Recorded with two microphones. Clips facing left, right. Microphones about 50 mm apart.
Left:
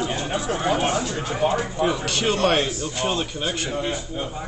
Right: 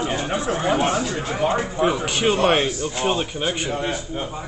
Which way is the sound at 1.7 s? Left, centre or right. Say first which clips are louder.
Right 2 dB; centre.